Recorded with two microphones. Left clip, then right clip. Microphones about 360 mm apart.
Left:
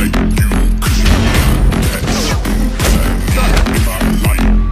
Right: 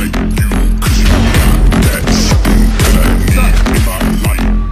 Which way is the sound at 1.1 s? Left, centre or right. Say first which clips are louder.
Right 2 dB; centre.